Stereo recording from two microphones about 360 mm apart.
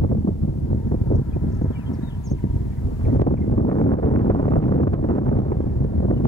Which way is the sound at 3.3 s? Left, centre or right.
Centre.